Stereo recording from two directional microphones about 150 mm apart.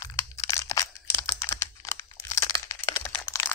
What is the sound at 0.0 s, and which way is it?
Crushing, 20° left (ahead or behind).